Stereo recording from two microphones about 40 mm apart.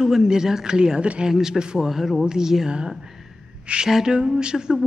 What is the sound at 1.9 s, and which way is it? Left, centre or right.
Mantra, centre.